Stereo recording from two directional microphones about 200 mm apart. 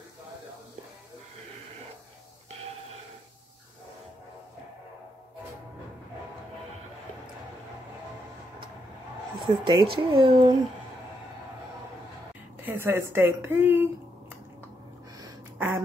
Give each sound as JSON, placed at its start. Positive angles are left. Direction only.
{"t": 9.4, "sound": "speech", "side_deg": -25}
{"t": 12.6, "sound": "a woman's voice", "side_deg": -10}
{"t": 15.5, "sound": "a sound", "side_deg": -10}